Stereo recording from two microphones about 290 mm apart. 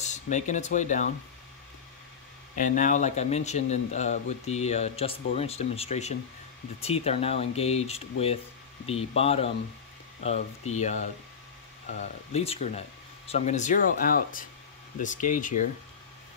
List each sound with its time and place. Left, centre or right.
0.0 s speech: left
2.5 s speech: left